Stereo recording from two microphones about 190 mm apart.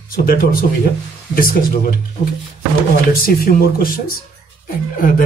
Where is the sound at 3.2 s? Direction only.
50° left (ahead or behind).